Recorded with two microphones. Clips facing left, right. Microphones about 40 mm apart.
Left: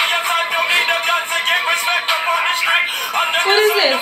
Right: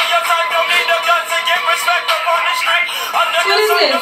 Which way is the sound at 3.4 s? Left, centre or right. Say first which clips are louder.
Left 1 dB; centre.